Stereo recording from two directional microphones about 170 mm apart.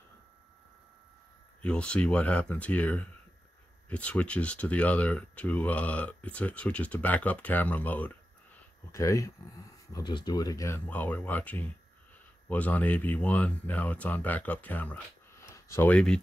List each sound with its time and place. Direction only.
1.6 s speech: 5° left (ahead or behind)